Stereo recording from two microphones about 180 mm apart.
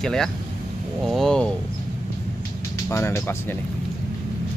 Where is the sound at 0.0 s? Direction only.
5° left (ahead or behind).